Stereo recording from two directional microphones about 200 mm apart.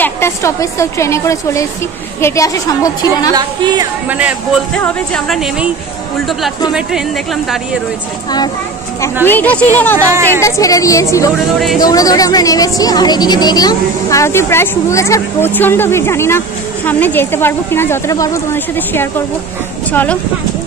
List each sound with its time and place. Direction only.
0.0 s a woman's voice: 15° left (ahead or behind)
3.3 s music: 20° right (ahead or behind)
4.1 s speech: 5° right (ahead or behind)
9.2 s a woman's voice: 10° left (ahead or behind)
9.9 s speech: 15° right (ahead or behind)
10.4 s a woman's voice: 15° left (ahead or behind)